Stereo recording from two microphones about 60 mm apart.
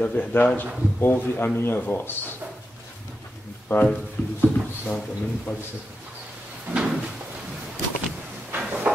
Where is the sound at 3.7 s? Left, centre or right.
Left.